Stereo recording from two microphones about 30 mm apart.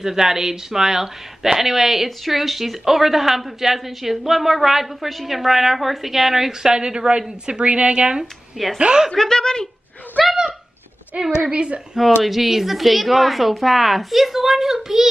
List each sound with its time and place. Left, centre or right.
0.0 s a woman's voice: centre
6.6 s a woman's voice: right
7.6 s a woman's voice: right
9.1 s a woman's voice: centre
11.1 s a woman's voice: right
11.5 s speech: right
12.0 s a woman's voice: centre